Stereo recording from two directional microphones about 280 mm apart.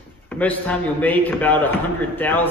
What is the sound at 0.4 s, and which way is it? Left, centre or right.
A man's voice, centre.